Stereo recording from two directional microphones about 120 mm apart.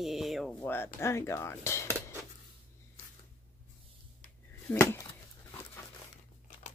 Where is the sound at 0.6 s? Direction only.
20° left (ahead or behind).